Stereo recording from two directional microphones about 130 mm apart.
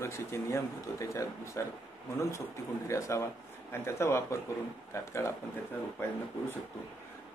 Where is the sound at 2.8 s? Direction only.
20° left (ahead or behind).